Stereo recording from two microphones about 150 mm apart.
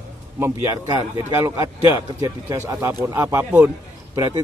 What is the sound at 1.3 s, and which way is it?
Speech, 20° right (ahead or behind).